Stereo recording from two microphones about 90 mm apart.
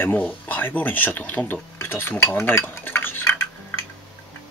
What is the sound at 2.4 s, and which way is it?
Stir, 25° left (ahead or behind).